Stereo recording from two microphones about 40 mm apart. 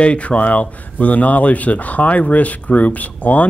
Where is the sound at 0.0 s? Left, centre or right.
Left.